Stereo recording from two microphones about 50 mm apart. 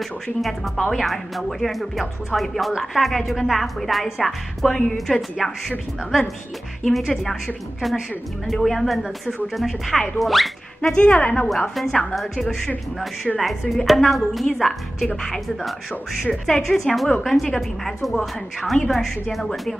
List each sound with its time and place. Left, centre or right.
0.0 s a woman's voice: centre
8.6 s a woman's voice: centre
10.8 s a woman's voice: left
11.7 s a woman's voice: centre
16.4 s a woman's voice: centre